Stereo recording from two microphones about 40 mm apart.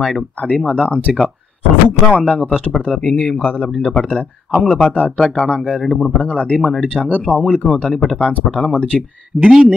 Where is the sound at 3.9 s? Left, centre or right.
Left.